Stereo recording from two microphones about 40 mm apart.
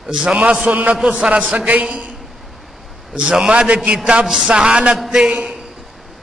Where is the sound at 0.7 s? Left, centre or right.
Right.